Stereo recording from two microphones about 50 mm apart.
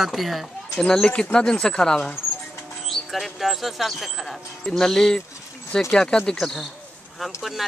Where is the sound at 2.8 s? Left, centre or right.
Centre.